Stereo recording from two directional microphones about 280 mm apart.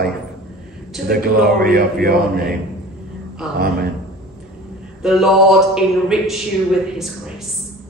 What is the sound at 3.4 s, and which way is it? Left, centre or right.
Speech, centre.